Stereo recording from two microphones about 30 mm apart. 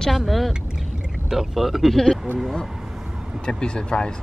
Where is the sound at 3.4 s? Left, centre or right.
Left.